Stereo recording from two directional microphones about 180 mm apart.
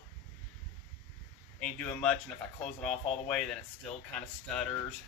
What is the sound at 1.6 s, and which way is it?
Speech, 5° left (ahead or behind).